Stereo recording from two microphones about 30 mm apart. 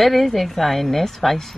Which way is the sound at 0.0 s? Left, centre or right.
Centre.